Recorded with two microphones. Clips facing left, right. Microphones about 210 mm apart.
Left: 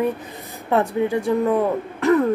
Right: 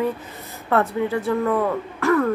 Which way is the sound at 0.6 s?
15° left (ahead or behind).